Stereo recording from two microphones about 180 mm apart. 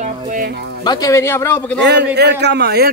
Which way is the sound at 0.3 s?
55° right (ahead or behind).